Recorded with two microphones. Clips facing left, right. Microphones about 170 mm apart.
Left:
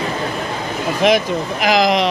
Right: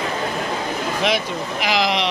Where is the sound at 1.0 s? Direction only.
45° left (ahead or behind).